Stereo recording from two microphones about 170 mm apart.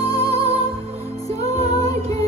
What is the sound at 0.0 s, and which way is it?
Music, 35° right (ahead or behind).